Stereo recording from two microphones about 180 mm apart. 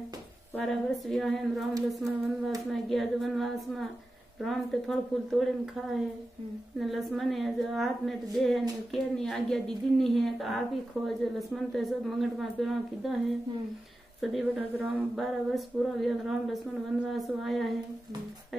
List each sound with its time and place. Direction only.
0.6 s a woman's voice: centre (ahead or behind)
6.8 s a woman's voice: centre (ahead or behind)
14.2 s a woman's voice: centre (ahead or behind)